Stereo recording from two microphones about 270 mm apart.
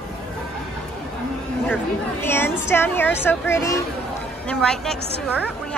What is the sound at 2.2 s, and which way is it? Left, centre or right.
A woman's voice, centre.